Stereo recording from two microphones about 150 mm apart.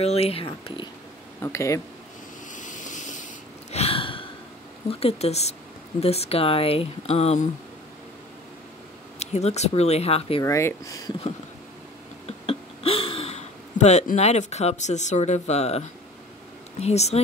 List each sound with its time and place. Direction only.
0.0 s speech: 45° left (ahead or behind)
1.4 s speech: 20° left (ahead or behind)
2.5 s waves: 55° left (ahead or behind)
3.7 s a sound: 40° left (ahead or behind)
4.8 s speech: 45° left (ahead or behind)
9.2 s speech: 45° left (ahead or behind)
10.4 s speech: 20° left (ahead or behind)
12.3 s a sound: 40° left (ahead or behind)
16.8 s speech: 45° left (ahead or behind)